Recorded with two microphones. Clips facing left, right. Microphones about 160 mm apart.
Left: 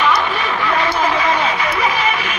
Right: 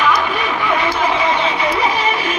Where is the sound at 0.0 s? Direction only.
10° right (ahead or behind).